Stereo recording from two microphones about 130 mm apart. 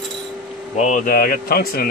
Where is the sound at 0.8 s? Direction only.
70° left (ahead or behind).